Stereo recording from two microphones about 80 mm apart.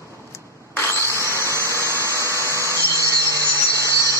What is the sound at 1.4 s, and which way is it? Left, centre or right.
Engine, right.